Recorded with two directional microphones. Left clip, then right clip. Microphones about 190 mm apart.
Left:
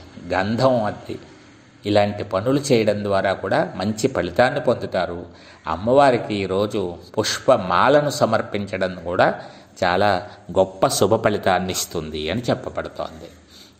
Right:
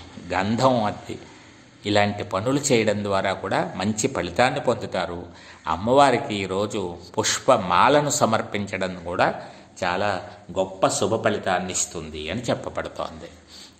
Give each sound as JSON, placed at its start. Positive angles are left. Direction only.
{"t": 0.3, "sound": "a man's voice", "side_deg": 5}
{"t": 1.8, "sound": "a man's voice", "side_deg": 5}
{"t": 12.6, "sound": "speech", "side_deg": 0}